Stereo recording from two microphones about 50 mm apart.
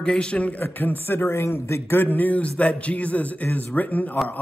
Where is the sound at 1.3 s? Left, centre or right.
Left.